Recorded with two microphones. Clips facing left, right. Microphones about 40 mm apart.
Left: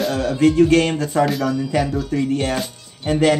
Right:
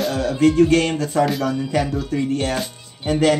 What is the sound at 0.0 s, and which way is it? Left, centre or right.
Music, centre.